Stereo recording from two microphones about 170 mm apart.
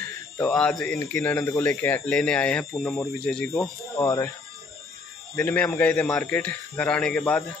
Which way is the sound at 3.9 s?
15° left (ahead or behind).